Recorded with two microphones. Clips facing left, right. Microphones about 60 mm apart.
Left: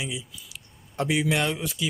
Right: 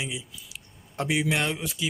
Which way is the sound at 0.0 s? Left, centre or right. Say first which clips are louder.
Left 1 dB; centre.